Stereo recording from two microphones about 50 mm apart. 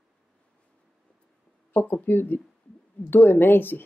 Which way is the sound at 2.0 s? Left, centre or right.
Left.